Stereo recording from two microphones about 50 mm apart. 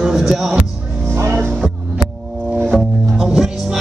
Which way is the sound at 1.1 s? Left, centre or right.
Right.